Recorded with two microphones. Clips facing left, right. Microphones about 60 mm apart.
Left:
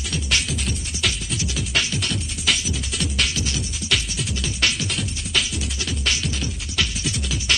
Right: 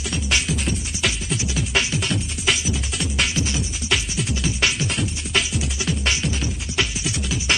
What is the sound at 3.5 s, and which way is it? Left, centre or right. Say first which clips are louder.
Music: right 1 dB; centre.